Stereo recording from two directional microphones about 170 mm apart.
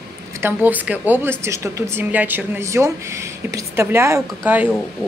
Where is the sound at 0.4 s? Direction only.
10° right (ahead or behind).